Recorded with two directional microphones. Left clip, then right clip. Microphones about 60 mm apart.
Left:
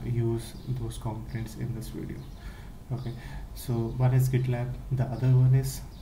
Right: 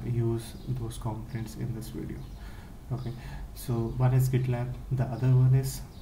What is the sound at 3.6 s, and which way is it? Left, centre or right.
Speech, centre.